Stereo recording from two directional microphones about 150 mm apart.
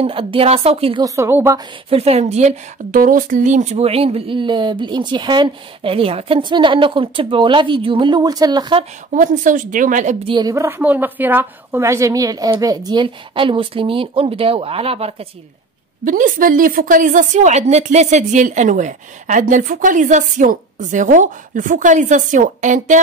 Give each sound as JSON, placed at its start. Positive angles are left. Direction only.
{"t": 0.0, "sound": "speech", "side_deg": -35}
{"t": 1.0, "sound": "a woman's voice", "side_deg": -20}
{"t": 1.9, "sound": "speech", "side_deg": -45}
{"t": 9.1, "sound": "a woman's voice", "side_deg": -60}
{"t": 10.2, "sound": "speech", "side_deg": -30}
{"t": 10.5, "sound": "a woman's voice", "side_deg": -15}
{"t": 16.1, "sound": "a woman's voice", "side_deg": -65}